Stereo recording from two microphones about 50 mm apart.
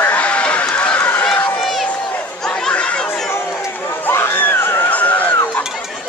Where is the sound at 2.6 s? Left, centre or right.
Centre.